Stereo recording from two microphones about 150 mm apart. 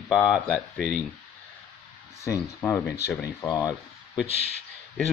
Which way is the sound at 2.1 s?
20° left (ahead or behind).